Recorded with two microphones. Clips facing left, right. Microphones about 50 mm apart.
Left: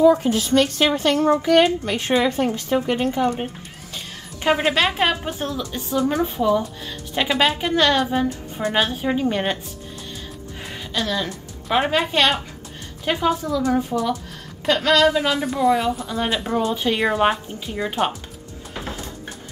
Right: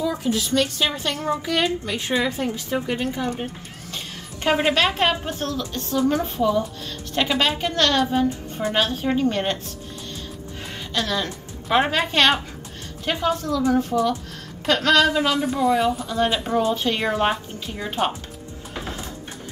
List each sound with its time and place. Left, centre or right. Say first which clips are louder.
0.0 s a woman's voice: left 8 dB; left
3.9 s a woman's voice: right 1 dB; centre
10.9 s a woman's voice: left 1 dB; centre
13.9 s speech: right 1 dB; centre